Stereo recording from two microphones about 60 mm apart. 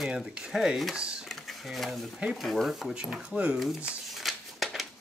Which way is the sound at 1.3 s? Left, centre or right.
Centre.